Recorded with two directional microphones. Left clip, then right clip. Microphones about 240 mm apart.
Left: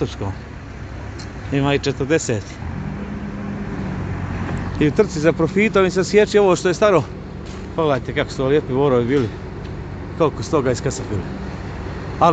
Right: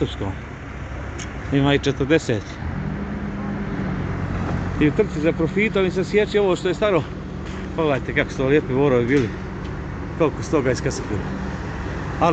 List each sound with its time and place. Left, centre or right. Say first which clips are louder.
1.5 s speech: even; centre
4.7 s speech: left 3 dB; left